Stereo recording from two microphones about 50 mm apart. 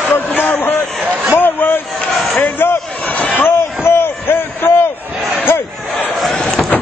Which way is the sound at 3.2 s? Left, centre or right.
Left.